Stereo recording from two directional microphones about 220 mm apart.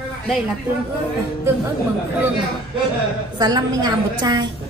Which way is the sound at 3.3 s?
20° right (ahead or behind).